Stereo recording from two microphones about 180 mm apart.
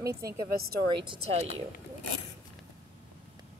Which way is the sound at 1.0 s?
30° right (ahead or behind).